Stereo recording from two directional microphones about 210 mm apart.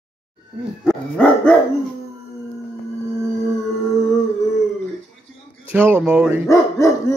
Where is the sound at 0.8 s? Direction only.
5° left (ahead or behind).